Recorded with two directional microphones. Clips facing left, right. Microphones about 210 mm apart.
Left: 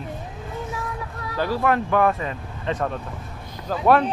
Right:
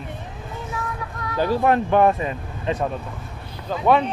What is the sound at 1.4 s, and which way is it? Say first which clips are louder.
Speech: right 3 dB; 20° right (ahead or behind).